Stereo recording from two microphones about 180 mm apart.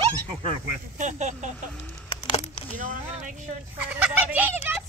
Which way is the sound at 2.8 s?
45° right (ahead or behind).